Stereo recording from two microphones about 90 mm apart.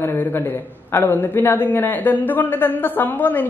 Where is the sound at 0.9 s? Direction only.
20° left (ahead or behind).